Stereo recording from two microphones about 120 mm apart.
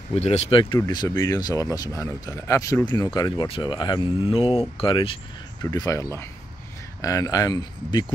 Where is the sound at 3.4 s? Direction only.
45° left (ahead or behind).